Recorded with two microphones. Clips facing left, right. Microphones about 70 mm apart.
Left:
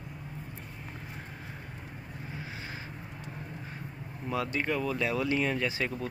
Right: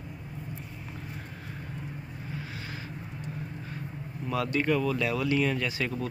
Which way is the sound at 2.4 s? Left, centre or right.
Left.